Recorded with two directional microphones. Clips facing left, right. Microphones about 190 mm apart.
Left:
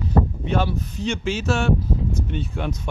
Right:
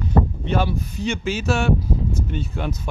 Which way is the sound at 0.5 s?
10° right (ahead or behind).